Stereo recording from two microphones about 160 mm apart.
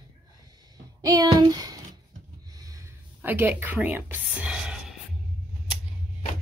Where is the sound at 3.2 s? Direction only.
10° right (ahead or behind).